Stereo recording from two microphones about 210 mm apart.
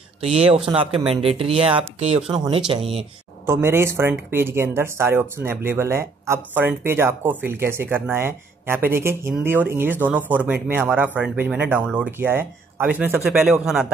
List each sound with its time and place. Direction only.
0.2 s speech: 30° right (ahead or behind)
3.4 s speech: 10° right (ahead or behind)